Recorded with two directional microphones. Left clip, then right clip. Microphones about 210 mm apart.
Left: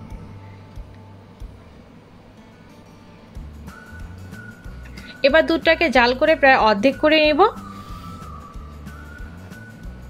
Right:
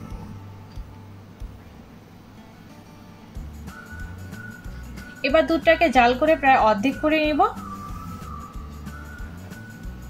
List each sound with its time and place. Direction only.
5.2 s speech: 50° left (ahead or behind)